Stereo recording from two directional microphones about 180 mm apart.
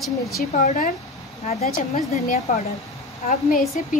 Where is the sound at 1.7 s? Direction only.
50° left (ahead or behind).